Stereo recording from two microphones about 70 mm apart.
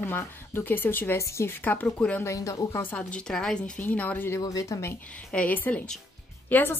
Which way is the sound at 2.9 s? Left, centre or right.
Centre.